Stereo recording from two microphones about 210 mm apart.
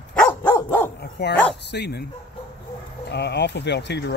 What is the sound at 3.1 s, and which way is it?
Speech, 55° left (ahead or behind).